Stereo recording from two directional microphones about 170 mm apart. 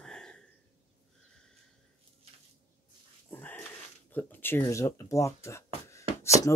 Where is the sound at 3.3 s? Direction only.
10° left (ahead or behind).